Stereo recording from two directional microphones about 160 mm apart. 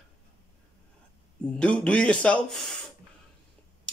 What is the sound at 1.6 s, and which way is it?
Speech, 5° left (ahead or behind).